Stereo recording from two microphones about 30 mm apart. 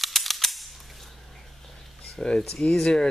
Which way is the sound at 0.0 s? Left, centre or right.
Centre.